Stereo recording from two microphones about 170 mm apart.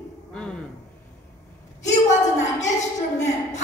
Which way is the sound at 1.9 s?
45° left (ahead or behind).